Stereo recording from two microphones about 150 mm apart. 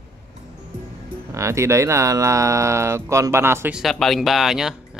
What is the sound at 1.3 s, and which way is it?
Speech, 20° right (ahead or behind).